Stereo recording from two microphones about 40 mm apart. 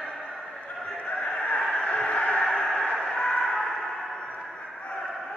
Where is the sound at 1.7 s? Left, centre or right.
Left.